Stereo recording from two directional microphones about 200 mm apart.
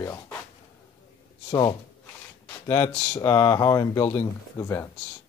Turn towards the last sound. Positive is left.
turn(degrees=15)  # may be behind; listen again after turning